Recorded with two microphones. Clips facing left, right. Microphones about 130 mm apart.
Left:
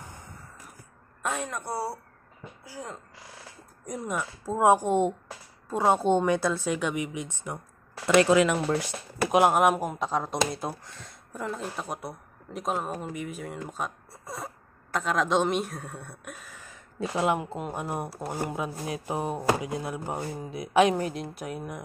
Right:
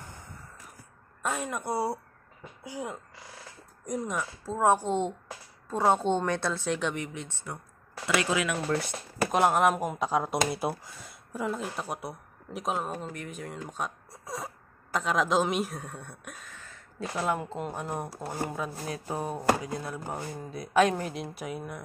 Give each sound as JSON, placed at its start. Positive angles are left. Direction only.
{"t": 1.2, "sound": "speech", "side_deg": 0}
{"t": 1.6, "sound": "speech", "side_deg": -15}
{"t": 3.8, "sound": "speech", "side_deg": 5}
{"t": 4.5, "sound": "speech", "side_deg": 15}
{"t": 8.2, "sound": "speech", "side_deg": 35}
{"t": 8.5, "sound": "speech", "side_deg": 15}
{"t": 9.2, "sound": "speech", "side_deg": 5}
{"t": 17.4, "sound": "speech", "side_deg": 5}
{"t": 19.0, "sound": "speech", "side_deg": 15}